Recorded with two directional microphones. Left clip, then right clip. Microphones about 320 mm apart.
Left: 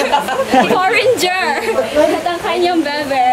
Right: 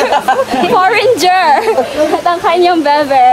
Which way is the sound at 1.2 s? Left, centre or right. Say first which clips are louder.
Right 7 dB; centre.